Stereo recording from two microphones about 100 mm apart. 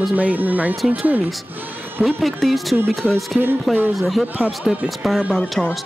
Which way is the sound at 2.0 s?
Centre (ahead or behind).